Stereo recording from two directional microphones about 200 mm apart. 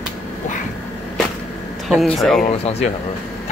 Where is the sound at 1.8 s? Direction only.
Centre (ahead or behind).